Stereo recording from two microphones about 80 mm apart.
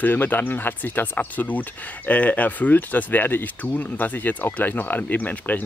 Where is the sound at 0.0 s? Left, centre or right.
Left.